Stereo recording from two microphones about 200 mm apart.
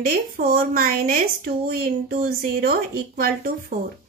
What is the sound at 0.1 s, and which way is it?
Speech, 50° right (ahead or behind).